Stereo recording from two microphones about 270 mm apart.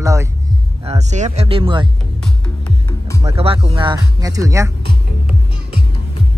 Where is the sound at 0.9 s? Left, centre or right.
Right.